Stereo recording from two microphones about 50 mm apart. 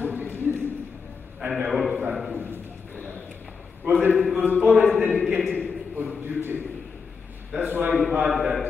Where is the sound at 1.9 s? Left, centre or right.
Right.